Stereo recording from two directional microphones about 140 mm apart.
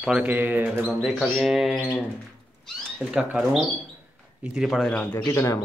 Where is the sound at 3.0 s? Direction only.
5° right (ahead or behind); by 5.6 s 20° left (ahead or behind).